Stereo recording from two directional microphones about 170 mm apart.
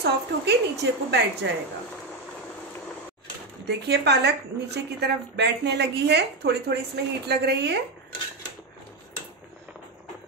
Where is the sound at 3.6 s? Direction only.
80° right.